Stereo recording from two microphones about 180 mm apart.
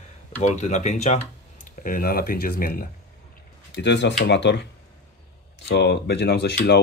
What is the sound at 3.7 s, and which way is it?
Speech, 80° left.